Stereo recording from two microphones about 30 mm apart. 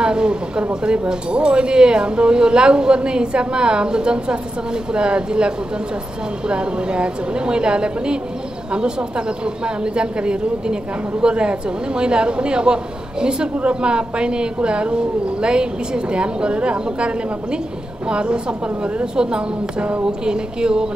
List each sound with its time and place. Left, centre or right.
0.0 s a woman's voice: right
20.1 s speech: right